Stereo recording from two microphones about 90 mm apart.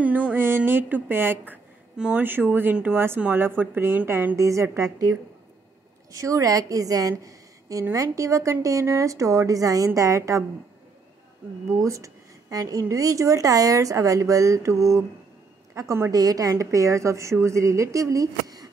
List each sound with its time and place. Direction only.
0.0 s a sound: 15° right (ahead or behind)
2.0 s speech: 10° right (ahead or behind)
2.2 s a sound: 20° right (ahead or behind)
4.4 s a woman's voice: 35° right (ahead or behind)
6.1 s a woman's voice: 40° right (ahead or behind)
11.7 s a woman's voice: 35° right (ahead or behind)